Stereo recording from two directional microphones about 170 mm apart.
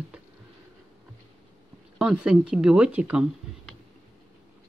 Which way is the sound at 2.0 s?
5° right (ahead or behind).